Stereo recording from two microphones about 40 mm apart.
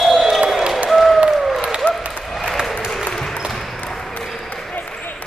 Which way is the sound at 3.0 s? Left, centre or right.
Centre.